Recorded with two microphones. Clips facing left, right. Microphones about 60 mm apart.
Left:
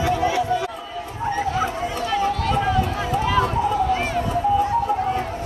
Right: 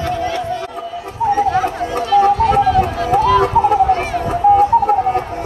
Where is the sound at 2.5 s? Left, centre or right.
Right.